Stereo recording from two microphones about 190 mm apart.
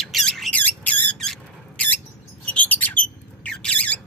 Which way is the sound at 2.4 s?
10° left (ahead or behind).